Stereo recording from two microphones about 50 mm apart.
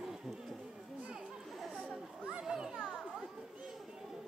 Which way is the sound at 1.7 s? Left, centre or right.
Right.